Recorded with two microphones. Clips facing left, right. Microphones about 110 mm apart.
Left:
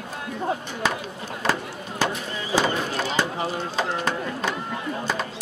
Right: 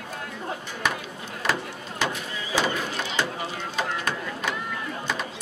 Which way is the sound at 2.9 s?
35° left (ahead or behind).